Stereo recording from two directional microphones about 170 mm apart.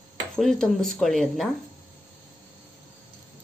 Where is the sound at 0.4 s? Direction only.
5° left (ahead or behind).